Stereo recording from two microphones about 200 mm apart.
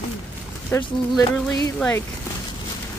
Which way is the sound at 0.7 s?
15° left (ahead or behind).